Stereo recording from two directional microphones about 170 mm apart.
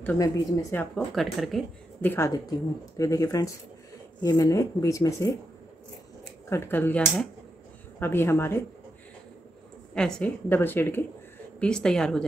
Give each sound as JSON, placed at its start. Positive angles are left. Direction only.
{"t": 0.0, "sound": "a woman's voice", "side_deg": 10}
{"t": 0.9, "sound": "speech", "side_deg": 0}
{"t": 2.0, "sound": "a woman's voice", "side_deg": 15}
{"t": 6.5, "sound": "a woman's voice", "side_deg": 10}
{"t": 9.9, "sound": "a woman's voice", "side_deg": 5}